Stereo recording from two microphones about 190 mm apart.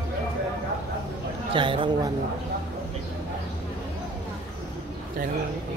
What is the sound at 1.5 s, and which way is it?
Speech, 25° right (ahead or behind).